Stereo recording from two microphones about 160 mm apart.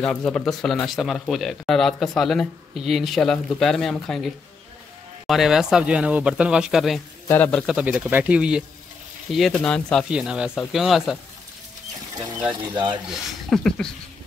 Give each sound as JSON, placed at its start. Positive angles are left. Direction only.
{"t": 0.0, "sound": "speech", "side_deg": 5}
{"t": 7.2, "sound": "a man's voice", "side_deg": 10}
{"t": 7.6, "sound": "speech", "side_deg": -5}
{"t": 10.0, "sound": "speech", "side_deg": -5}
{"t": 12.4, "sound": "speech", "side_deg": -30}
{"t": 12.9, "sound": "speech", "side_deg": 0}